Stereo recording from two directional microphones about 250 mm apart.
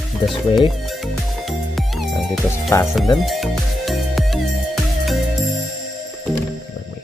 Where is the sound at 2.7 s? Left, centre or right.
Centre.